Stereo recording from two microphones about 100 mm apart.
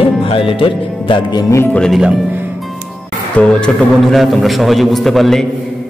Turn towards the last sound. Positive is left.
turn(degrees=0)  # may be behind; listen again after turning